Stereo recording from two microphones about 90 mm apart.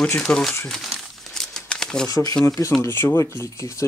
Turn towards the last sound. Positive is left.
turn(degrees=35)  # may be behind; listen again after turning